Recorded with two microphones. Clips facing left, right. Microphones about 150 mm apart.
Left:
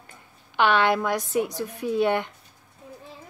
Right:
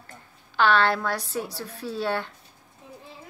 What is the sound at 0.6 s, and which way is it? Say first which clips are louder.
A woman's voice: left 1 dB; 15° left (ahead or behind).